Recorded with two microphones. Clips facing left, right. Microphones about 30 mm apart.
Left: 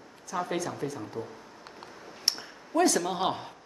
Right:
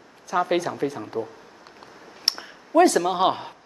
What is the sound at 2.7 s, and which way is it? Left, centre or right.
Speech, right.